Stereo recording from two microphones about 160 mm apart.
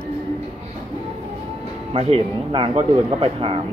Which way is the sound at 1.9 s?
35° right (ahead or behind).